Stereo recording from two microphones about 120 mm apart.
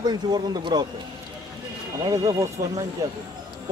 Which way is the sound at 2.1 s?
25° right (ahead or behind).